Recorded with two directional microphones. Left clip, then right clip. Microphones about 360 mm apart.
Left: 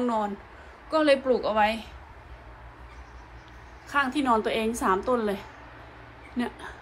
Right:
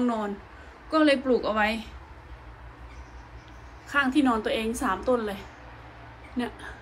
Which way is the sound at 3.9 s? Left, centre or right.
Centre.